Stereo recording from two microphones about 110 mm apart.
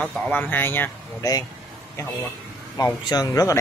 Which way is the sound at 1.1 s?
35° left (ahead or behind).